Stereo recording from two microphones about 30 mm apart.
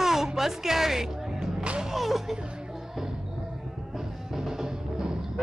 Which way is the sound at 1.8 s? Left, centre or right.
Centre.